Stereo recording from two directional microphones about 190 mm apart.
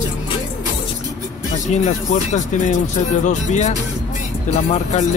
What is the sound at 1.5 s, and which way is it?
Speech, 40° left (ahead or behind).